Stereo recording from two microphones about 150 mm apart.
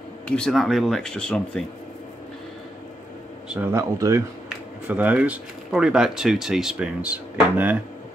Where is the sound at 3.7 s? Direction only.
20° right (ahead or behind).